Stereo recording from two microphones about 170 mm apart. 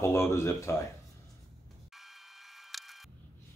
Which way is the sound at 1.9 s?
Centre (ahead or behind).